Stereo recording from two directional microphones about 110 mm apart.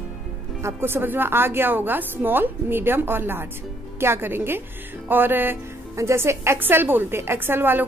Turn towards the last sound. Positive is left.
turn(degrees=-20)  # may be behind; listen again after turning